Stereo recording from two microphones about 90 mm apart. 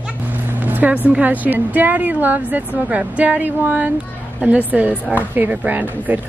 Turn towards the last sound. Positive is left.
turn(degrees=-20)  # may be behind; listen again after turning